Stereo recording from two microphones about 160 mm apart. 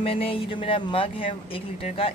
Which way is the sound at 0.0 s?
35° left (ahead or behind).